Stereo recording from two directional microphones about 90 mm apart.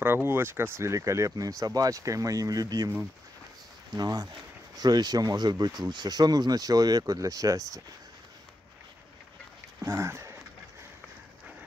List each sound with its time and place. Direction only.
0.0 s speech: 25° right (ahead or behind); by 2.9 s 40° right (ahead or behind)
3.9 s speech: 45° right (ahead or behind)
9.8 s a sound: 30° right (ahead or behind)